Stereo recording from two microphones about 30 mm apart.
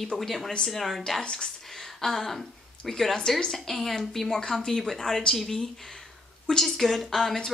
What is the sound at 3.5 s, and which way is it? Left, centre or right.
Speech, centre.